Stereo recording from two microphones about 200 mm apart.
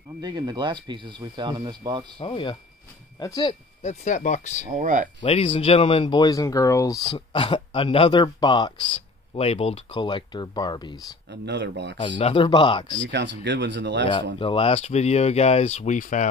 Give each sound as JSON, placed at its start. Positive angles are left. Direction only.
{"t": 0.2, "sound": "speech", "side_deg": -20}
{"t": 2.1, "sound": "speech", "side_deg": 25}
{"t": 3.8, "sound": "speech", "side_deg": 35}
{"t": 4.7, "sound": "speech", "side_deg": -40}
{"t": 5.2, "sound": "speech", "side_deg": 25}
{"t": 11.4, "sound": "speech", "side_deg": -60}
{"t": 12.0, "sound": "speech", "side_deg": 25}
{"t": 13.1, "sound": "speech", "side_deg": -60}
{"t": 14.4, "sound": "speech", "side_deg": 25}